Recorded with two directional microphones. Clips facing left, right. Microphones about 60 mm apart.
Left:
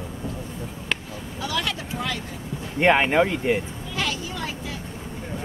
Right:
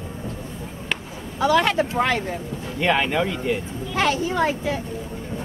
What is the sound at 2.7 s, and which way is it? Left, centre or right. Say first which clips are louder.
Speech: left 3 dB; left.